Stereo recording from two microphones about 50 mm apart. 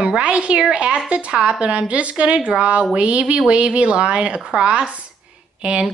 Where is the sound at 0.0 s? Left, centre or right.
Right.